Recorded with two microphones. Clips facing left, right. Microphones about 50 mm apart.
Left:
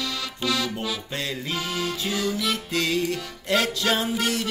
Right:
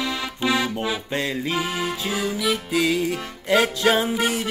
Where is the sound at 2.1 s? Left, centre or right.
Centre.